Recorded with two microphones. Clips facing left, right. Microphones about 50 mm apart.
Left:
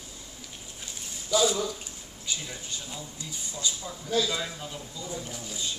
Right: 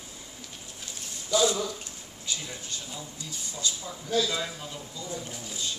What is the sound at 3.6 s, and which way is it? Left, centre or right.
Speech, centre.